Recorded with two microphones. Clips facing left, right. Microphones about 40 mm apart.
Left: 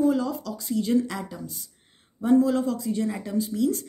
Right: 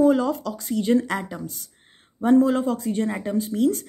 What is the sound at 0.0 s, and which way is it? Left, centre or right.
Speech, right.